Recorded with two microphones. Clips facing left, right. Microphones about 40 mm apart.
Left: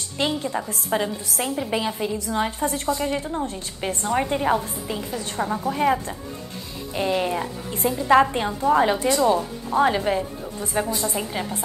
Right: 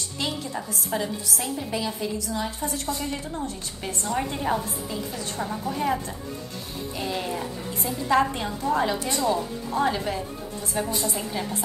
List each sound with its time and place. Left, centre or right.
0.2 s a woman's voice: left
3.0 s speech: left